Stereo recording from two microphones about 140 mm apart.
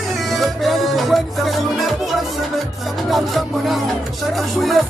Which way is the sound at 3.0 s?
Centre (ahead or behind).